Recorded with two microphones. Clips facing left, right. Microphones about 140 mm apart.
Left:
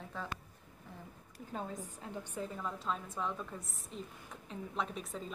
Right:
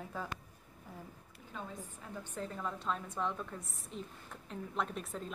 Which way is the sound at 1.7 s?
15° left (ahead or behind).